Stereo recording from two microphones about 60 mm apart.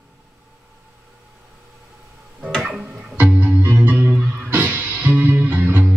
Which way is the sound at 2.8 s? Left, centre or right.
Right.